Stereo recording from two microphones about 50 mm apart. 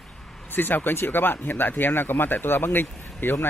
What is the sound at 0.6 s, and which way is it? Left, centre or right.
A man's voice, left.